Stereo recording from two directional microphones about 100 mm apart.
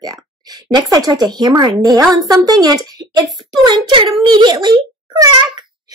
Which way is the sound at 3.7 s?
55° right (ahead or behind).